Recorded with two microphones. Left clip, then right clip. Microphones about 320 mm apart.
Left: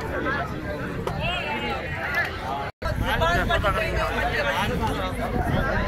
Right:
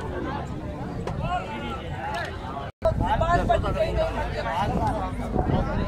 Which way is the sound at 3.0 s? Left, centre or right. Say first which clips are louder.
Left 2 dB; right.